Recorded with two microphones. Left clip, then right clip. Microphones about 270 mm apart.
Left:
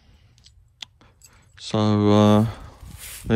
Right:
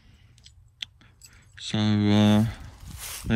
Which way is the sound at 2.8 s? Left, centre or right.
Centre.